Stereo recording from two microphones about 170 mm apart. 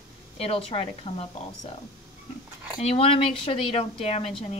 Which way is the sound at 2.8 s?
35° left (ahead or behind).